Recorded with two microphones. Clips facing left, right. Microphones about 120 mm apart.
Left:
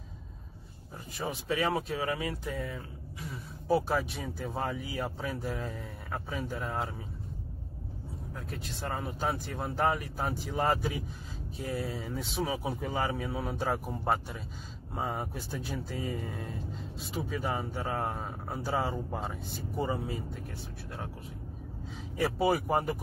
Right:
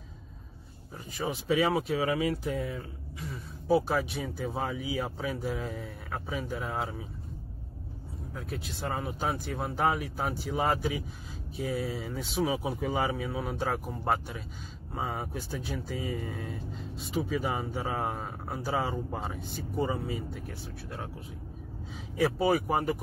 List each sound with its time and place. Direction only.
1.1 s speech: 5° right (ahead or behind)
3.6 s speech: centre (ahead or behind)
8.5 s speech: 10° right (ahead or behind)
22.1 s speech: centre (ahead or behind)